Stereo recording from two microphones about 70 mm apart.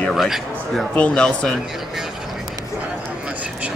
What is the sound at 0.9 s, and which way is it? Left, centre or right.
Speech, centre.